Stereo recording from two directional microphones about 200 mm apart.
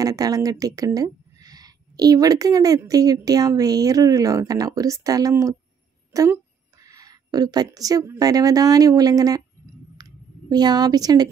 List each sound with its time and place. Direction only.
0.0 s a woman's voice: 15° right (ahead or behind)
10.0 s a sound: 20° right (ahead or behind)
10.5 s a woman's voice: 20° right (ahead or behind)